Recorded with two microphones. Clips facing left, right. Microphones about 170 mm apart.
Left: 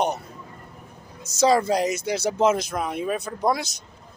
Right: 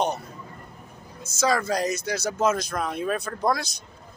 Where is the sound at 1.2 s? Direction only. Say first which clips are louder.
Left 5 dB; 35° left (ahead or behind).